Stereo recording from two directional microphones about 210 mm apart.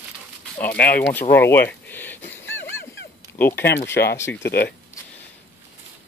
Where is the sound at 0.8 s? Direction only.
45° left (ahead or behind).